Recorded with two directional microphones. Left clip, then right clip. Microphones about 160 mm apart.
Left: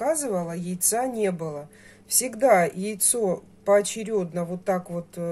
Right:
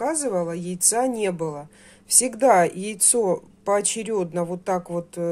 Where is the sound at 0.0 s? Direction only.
40° right (ahead or behind).